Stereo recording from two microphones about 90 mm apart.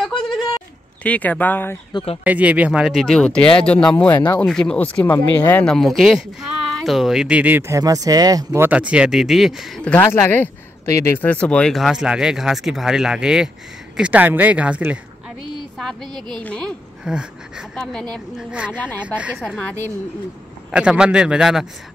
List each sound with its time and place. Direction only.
0.0 s a sound: 5° left (ahead or behind)
1.0 s speech: 15° left (ahead or behind)
2.2 s speech: 15° right (ahead or behind)
3.1 s speech: 10° left (ahead or behind)
5.8 s speech: centre (ahead or behind); by 7.6 s 15° right (ahead or behind)
7.6 s speech: 40° right (ahead or behind)
8.7 s speech: 10° right (ahead or behind)
9.9 s speech: 25° left (ahead or behind)
10.9 s speech: 35° left (ahead or behind)
11.1 s speech: 15° left (ahead or behind)
11.7 s speech: 5° right (ahead or behind)
15.8 s speech: 5° left (ahead or behind)
17.0 s speech: 10° right (ahead or behind)
20.7 s speech: 10° right (ahead or behind)